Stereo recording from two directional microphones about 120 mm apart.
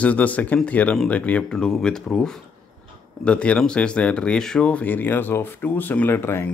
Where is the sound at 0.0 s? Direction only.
10° left (ahead or behind).